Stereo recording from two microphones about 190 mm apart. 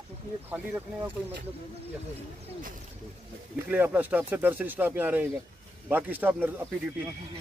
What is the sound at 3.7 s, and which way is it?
Speech, 10° right (ahead or behind).